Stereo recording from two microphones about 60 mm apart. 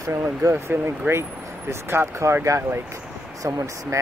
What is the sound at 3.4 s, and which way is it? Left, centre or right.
Speech, right.